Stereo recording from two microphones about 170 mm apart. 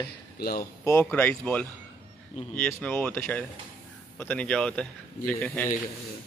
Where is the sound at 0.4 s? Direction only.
60° left (ahead or behind).